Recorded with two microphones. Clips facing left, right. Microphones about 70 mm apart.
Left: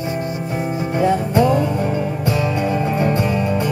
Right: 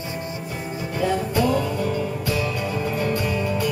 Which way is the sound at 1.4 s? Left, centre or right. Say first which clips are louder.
Left 4 dB; left.